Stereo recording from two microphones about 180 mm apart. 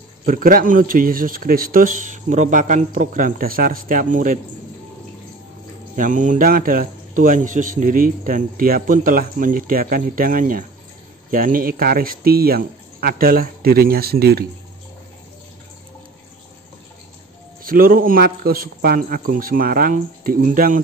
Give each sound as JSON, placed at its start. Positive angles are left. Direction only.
{"t": 0.2, "sound": "speech", "side_deg": -50}
{"t": 5.9, "sound": "speech", "side_deg": -45}
{"t": 17.6, "sound": "speech", "side_deg": -50}